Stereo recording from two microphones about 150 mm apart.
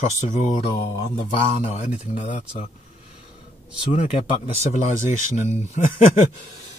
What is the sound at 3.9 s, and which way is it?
Speech, 40° left (ahead or behind).